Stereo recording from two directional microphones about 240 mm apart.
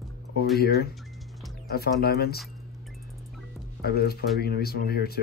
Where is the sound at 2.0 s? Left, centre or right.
Left.